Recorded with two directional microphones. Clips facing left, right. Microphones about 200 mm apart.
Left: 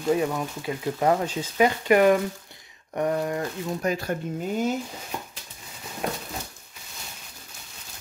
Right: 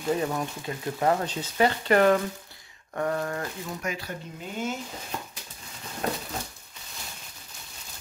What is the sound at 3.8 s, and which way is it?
Speech, 35° left (ahead or behind).